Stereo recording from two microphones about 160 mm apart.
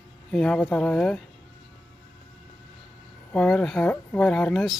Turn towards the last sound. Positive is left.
turn(degrees=5)  # may be behind; listen again after turning